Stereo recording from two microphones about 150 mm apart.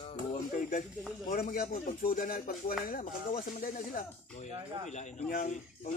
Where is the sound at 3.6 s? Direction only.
75° left (ahead or behind).